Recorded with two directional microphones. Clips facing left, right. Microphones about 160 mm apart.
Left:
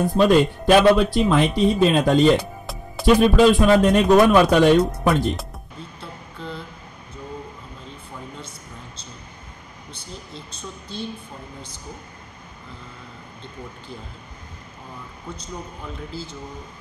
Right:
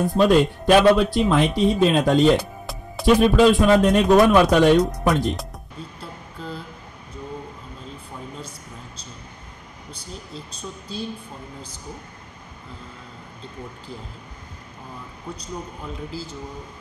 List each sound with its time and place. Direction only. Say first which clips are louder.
0.0 s speech: left 1 dB; centre (ahead or behind)
9.9 s speech: right 1 dB; 35° right (ahead or behind)